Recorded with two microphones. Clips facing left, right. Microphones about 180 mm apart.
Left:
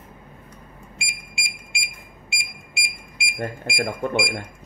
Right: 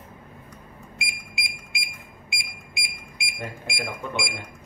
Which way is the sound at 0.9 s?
30° left (ahead or behind).